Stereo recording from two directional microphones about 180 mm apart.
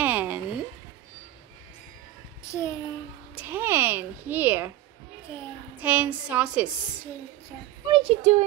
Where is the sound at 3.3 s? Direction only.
10° right (ahead or behind).